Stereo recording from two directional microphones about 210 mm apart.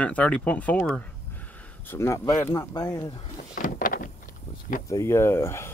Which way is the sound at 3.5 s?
40° left (ahead or behind).